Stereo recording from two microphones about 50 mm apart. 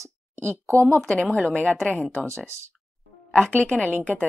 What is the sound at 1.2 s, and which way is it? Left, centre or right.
Speech, centre.